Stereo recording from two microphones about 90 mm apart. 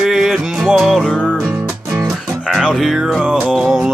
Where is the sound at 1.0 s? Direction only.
10° left (ahead or behind).